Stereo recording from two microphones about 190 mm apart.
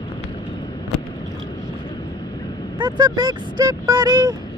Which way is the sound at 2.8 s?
20° right (ahead or behind).